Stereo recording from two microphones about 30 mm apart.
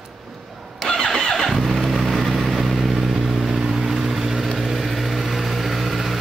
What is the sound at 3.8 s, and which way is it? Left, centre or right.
Vehicle, centre.